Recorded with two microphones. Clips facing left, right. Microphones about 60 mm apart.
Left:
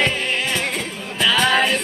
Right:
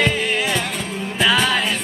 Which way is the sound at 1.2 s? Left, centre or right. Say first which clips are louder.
Right 1 dB; centre.